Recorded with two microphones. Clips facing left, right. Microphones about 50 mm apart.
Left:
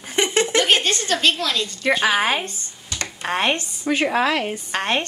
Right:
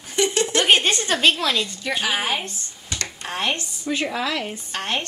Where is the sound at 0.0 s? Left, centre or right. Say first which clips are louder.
Left 1 dB; left.